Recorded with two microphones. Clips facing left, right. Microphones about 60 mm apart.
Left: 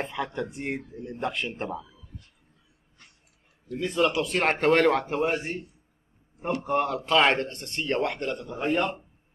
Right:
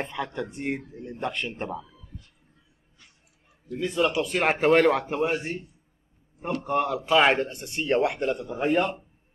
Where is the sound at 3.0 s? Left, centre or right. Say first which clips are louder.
Left 1 dB; left.